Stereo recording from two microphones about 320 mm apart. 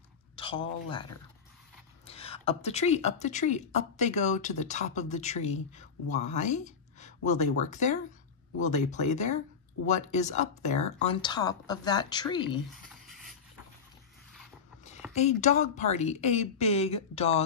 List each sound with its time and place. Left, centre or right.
0.4 s speech: centre
2.0 s speech: centre
12.8 s rub: centre
15.1 s speech: left